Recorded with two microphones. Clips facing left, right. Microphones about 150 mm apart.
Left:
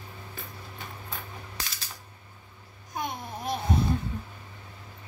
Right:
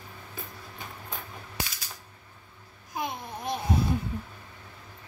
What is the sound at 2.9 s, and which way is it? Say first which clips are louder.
Babbling: even; centre (ahead or behind).